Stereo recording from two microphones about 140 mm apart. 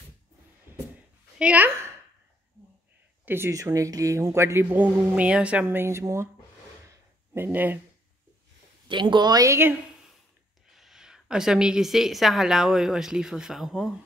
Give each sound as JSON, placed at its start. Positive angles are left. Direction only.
{"t": 0.7, "sound": "a sound", "side_deg": -15}
{"t": 1.4, "sound": "a woman's voice", "side_deg": -10}
{"t": 3.3, "sound": "speech", "side_deg": -15}
{"t": 6.9, "sound": "a sound", "side_deg": -15}
{"t": 8.8, "sound": "speech", "side_deg": -35}
{"t": 10.7, "sound": "a woman's voice", "side_deg": 0}